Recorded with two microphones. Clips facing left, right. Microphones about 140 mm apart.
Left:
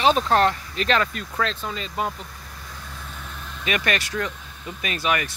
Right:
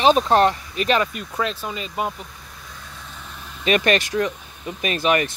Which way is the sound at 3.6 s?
25° right (ahead or behind).